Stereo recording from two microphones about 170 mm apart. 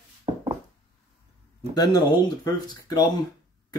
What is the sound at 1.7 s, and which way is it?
Speech, 25° left (ahead or behind).